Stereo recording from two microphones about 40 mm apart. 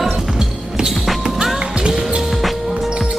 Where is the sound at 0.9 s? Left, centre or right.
Centre.